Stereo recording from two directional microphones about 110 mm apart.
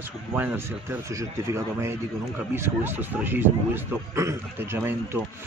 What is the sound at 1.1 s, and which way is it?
Speech, 30° right (ahead or behind).